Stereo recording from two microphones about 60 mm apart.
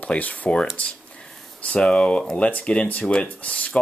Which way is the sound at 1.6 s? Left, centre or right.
Left.